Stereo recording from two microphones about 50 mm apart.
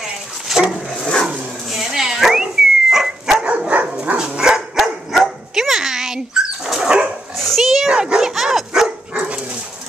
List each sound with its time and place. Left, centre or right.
0.0 s dog: centre
0.8 s a sound: centre
1.7 s dog: centre
3.4 s dog: right
4.2 s dog: centre
7.3 s a sound: centre
7.9 s dog: centre